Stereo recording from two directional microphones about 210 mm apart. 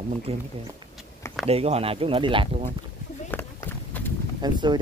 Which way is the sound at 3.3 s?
10° left (ahead or behind).